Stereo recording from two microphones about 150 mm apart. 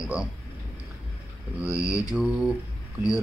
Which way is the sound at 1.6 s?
5° right (ahead or behind).